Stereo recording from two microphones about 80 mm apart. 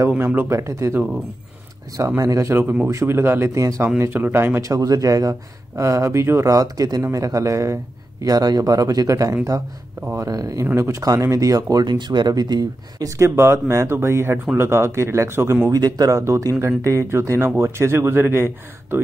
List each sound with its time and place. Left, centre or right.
0.2 s speech: right
0.5 s speech: right
2.0 s speech: right
2.6 s speech: centre
2.9 s speech: right
4.0 s speech: right
4.6 s speech: right
6.5 s speech: right
10.6 s speech: right
11.7 s speech: right
13.2 s speech: right
15.7 s speech: right